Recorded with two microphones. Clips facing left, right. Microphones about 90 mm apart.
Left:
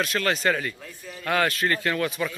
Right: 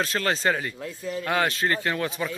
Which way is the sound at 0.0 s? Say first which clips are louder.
Even; 30° right (ahead or behind).